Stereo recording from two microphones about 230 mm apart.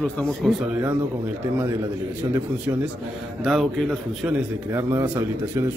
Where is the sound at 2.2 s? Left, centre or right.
Centre.